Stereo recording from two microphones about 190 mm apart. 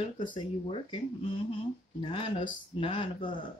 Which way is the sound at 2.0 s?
25° left (ahead or behind).